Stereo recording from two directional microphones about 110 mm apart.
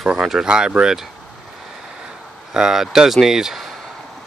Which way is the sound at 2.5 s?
5° right (ahead or behind).